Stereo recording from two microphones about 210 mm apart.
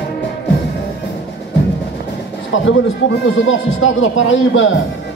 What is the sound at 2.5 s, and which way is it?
A man's voice, 65° left (ahead or behind).